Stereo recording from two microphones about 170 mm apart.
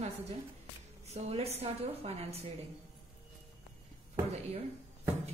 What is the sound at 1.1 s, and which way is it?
A woman's voice, 40° right (ahead or behind).